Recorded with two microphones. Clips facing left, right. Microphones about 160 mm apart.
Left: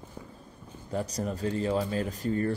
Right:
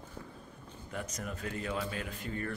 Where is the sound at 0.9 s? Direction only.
35° left (ahead or behind).